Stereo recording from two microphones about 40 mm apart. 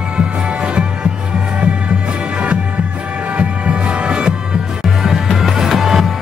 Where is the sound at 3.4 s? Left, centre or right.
Right.